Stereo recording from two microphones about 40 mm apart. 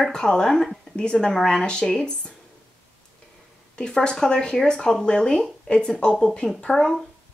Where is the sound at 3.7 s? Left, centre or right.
Left.